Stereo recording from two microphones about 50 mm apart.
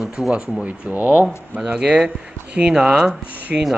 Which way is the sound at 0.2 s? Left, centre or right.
Centre.